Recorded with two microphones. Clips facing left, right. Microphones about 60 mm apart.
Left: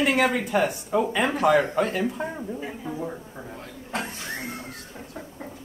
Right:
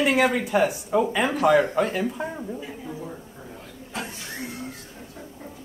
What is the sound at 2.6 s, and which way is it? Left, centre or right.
Speech, left.